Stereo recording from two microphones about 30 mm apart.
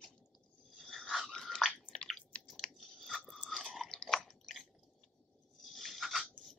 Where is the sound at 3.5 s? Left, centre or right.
Centre.